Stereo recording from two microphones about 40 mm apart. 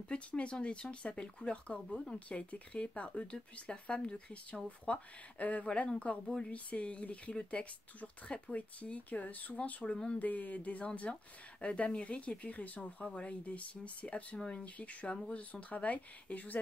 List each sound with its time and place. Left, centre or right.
0.1 s speech: left
11.1 s speech: left
11.6 s speech: left